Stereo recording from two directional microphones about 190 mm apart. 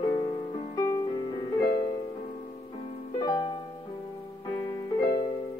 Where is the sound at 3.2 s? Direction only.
20° left (ahead or behind).